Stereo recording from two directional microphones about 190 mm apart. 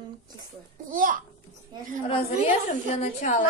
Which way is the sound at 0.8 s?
45° right (ahead or behind).